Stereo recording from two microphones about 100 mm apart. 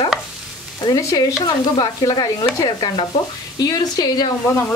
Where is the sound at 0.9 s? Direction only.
35° left (ahead or behind).